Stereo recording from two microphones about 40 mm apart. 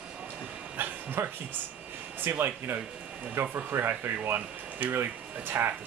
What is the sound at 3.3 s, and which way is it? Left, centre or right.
Speech, right.